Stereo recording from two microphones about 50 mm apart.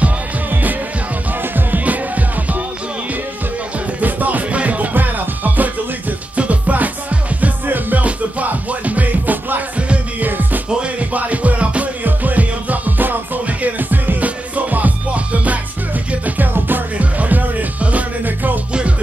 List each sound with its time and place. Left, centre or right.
0.5 s music: right
4.0 s music: right
18.7 s music: right